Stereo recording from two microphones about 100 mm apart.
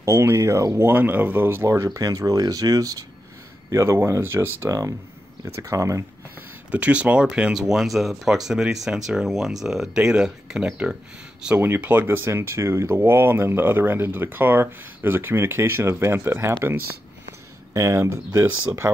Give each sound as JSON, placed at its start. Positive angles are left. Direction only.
{"t": 0.0, "sound": "speech", "side_deg": -25}
{"t": 0.8, "sound": "speech", "side_deg": -20}
{"t": 6.7, "sound": "speech", "side_deg": -15}
{"t": 11.4, "sound": "speech", "side_deg": -20}
{"t": 17.7, "sound": "speech", "side_deg": -30}